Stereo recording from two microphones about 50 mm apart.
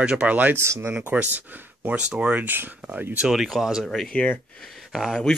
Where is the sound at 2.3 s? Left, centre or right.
Right.